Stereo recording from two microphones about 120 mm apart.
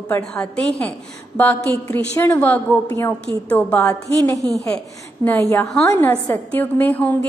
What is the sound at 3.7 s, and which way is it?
Speech, 10° left (ahead or behind).